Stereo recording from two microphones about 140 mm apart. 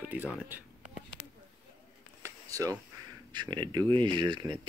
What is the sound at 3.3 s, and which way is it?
Speech, 35° right (ahead or behind).